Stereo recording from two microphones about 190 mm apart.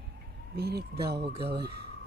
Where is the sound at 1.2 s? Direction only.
30° right (ahead or behind).